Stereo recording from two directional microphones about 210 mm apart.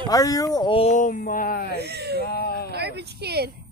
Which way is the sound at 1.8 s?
50° right (ahead or behind).